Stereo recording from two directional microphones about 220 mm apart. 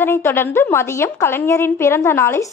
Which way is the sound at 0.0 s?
10° left (ahead or behind).